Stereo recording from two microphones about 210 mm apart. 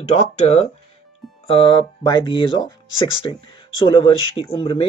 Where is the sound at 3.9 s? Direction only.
25° left (ahead or behind).